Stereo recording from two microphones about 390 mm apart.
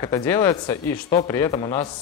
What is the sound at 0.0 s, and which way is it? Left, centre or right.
Speech, centre.